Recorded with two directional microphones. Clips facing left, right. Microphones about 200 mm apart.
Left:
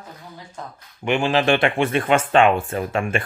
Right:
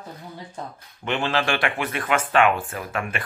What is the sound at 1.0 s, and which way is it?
Speech, 15° left (ahead or behind).